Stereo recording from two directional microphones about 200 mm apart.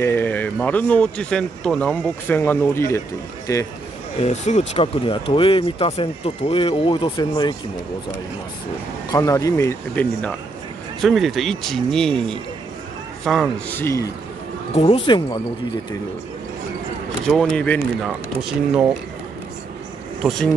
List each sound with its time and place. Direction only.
0.0 s speech: 10° left (ahead or behind)
4.2 s speech: 35° left (ahead or behind)
9.1 s speech: 15° left (ahead or behind)
11.0 s speech: centre (ahead or behind)
14.8 s speech: 25° left (ahead or behind)
17.2 s speech: centre (ahead or behind)
20.2 s speech: centre (ahead or behind)